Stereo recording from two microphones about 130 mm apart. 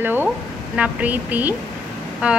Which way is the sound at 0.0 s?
15° right (ahead or behind).